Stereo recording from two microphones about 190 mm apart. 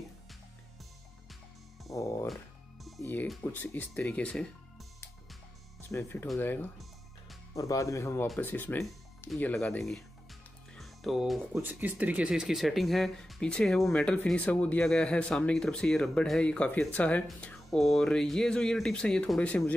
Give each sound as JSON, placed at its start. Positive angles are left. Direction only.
{"t": 1.9, "sound": "music", "side_deg": 15}
{"t": 3.1, "sound": "speech", "side_deg": 10}
{"t": 5.9, "sound": "speech", "side_deg": 10}